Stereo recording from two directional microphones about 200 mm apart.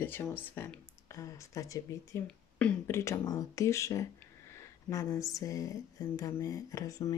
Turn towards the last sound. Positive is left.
turn(degrees=15)  # may be behind; listen again after turning